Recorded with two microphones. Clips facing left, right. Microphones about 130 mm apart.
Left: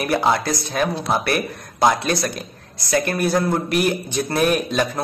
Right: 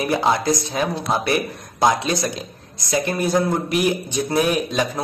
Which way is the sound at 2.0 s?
20° right (ahead or behind).